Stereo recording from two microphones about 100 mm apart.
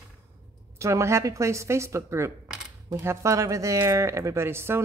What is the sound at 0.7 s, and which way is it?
A woman's voice, 30° right (ahead or behind).